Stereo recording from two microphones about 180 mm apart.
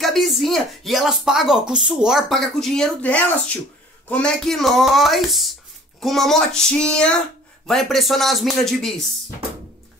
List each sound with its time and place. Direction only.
0.0 s speech: centre (ahead or behind)